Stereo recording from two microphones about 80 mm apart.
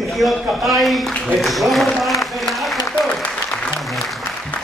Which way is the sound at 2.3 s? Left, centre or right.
Centre.